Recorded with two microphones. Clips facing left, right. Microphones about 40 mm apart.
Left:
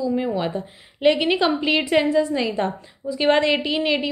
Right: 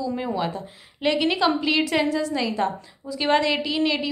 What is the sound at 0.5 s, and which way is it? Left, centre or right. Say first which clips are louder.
A woman's voice: left 5 dB; left.